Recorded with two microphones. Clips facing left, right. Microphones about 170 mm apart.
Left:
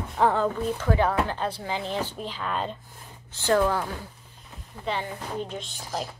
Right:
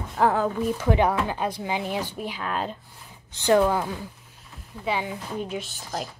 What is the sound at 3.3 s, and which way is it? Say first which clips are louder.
A woman's voice: right 3 dB; 20° right (ahead or behind).